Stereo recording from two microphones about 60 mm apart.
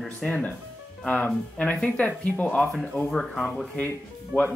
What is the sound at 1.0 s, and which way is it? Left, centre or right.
Speech, left.